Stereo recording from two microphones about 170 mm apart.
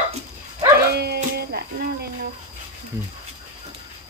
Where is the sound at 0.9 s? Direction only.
70° right (ahead or behind).